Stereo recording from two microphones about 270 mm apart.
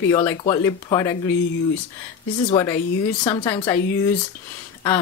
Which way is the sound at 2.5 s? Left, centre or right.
Centre.